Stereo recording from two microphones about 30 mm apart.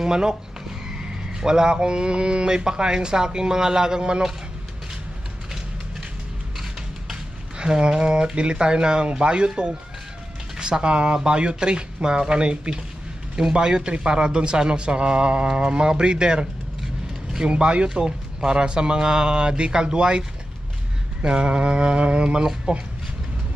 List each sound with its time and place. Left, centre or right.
0.0 s speech: right
1.4 s a man's voice: right
7.5 s speech: right
16.8 s mechanisms: centre
17.5 s a man's voice: right